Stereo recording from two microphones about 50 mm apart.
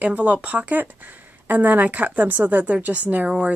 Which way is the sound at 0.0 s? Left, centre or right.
Right.